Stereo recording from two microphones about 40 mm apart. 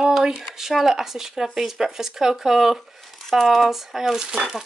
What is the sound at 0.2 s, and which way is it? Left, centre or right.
Speech, centre.